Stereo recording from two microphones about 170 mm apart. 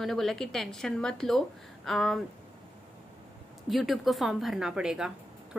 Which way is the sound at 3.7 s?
Centre (ahead or behind).